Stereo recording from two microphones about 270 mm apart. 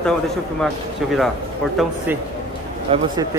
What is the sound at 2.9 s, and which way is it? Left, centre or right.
Speech, right.